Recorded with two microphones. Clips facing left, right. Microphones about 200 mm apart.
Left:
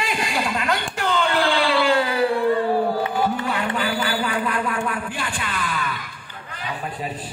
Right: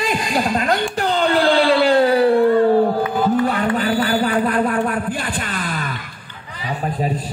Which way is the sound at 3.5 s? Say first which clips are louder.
Right 5 dB; 45° right (ahead or behind).